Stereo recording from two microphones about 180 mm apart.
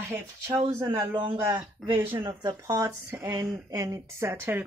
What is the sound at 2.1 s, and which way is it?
Speech, 15° right (ahead or behind).